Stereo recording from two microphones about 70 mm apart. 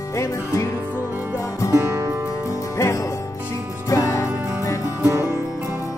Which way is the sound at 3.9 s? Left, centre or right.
Left.